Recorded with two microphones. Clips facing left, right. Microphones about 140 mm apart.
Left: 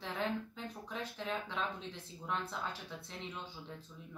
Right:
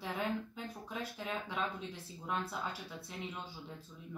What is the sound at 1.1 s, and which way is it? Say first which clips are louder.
Speech: left 1 dB; 10° right (ahead or behind).